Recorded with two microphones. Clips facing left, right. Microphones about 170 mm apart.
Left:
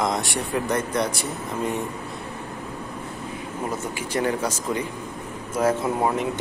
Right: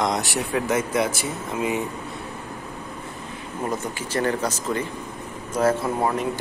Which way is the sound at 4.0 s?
10° left (ahead or behind).